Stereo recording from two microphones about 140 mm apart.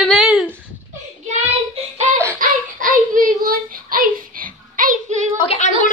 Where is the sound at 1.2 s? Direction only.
50° right (ahead or behind).